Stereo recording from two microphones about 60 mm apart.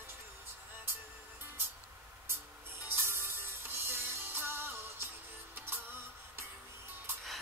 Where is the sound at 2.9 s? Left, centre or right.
Right.